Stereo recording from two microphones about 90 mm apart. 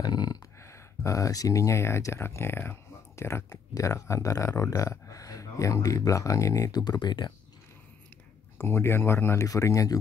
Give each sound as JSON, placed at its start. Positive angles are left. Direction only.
{"t": 0.0, "sound": "a sound", "side_deg": 50}
{"t": 0.6, "sound": "speech", "side_deg": 35}
{"t": 8.5, "sound": "speech", "side_deg": 25}